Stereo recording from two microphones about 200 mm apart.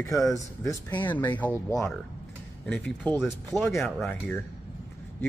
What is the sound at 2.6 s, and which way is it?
Speech, 5° left (ahead or behind).